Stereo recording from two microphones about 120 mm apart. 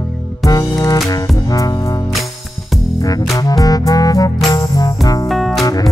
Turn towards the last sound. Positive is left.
turn(degrees=0)  # may be behind; listen again after turning